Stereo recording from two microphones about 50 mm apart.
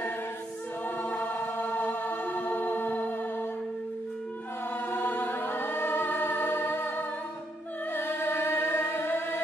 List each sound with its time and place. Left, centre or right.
1.0 s choir: left
4.8 s choir: left
7.9 s singing: left